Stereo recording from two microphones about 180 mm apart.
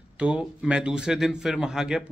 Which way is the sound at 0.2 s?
5° right (ahead or behind).